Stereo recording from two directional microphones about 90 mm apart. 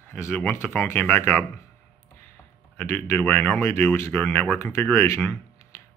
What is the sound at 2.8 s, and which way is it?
Speech, 20° left (ahead or behind).